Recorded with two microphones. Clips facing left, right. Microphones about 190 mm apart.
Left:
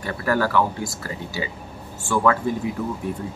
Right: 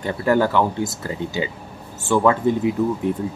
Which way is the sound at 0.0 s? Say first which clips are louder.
Right 4 dB; 20° right (ahead or behind).